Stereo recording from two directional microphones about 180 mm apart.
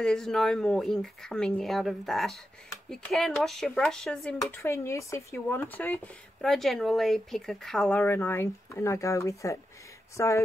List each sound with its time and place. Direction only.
0.0 s speech: 5° left (ahead or behind)